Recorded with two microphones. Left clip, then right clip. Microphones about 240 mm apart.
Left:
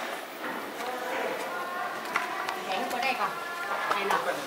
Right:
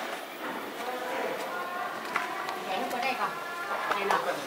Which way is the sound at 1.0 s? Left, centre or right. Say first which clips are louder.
Left 1 dB; centre.